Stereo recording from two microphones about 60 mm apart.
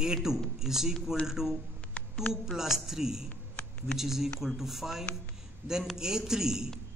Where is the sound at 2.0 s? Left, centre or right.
Left.